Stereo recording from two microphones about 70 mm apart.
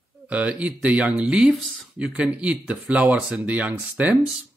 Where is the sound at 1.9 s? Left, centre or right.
Centre.